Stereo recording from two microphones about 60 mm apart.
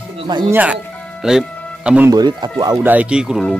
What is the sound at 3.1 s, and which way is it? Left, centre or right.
Speech, centre.